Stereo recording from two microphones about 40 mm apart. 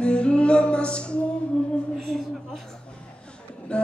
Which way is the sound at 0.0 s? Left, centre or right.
Left.